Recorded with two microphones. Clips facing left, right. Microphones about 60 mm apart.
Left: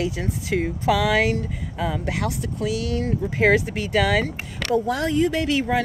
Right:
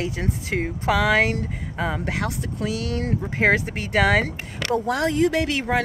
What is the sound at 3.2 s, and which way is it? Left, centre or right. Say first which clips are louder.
Speech: left 2 dB; right.